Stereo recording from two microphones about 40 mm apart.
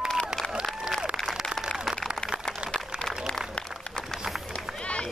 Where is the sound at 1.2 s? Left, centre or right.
Centre.